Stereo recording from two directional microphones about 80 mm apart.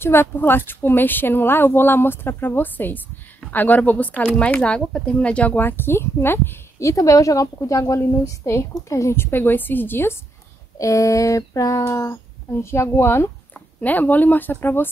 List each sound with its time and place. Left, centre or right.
0.0 s speech: left
6.8 s a woman's voice: left
10.8 s child singing: left
12.6 s a woman's voice: left
13.7 s speech: left